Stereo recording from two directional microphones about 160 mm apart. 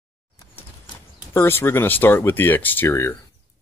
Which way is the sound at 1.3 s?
15° left (ahead or behind).